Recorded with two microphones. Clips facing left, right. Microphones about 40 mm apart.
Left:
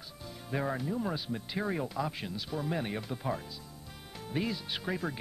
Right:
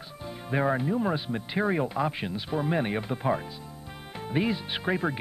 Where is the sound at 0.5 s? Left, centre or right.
Right.